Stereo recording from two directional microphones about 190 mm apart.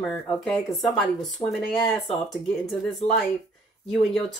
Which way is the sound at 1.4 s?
20° left (ahead or behind).